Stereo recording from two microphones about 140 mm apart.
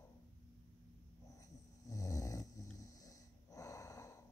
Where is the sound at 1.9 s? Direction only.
25° left (ahead or behind).